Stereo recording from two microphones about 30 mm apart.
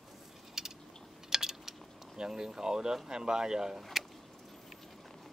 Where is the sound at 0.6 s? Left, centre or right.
Centre.